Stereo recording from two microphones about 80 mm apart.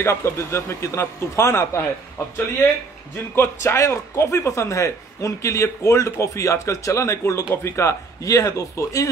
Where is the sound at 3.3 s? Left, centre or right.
Left.